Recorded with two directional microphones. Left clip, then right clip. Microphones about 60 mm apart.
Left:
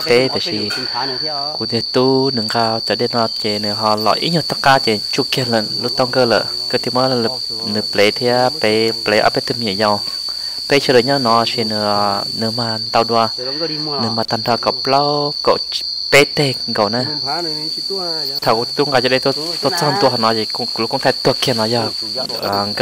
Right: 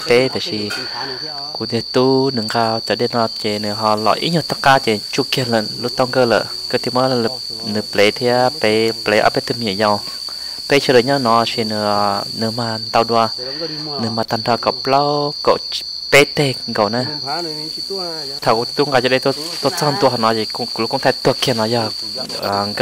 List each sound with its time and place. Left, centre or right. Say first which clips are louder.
0.1 s cricket: even; centre
1.7 s cricket: even; centre
18.4 s cricket: right 1 dB; centre